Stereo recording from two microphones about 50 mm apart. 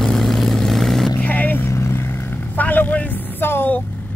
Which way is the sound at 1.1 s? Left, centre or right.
Left.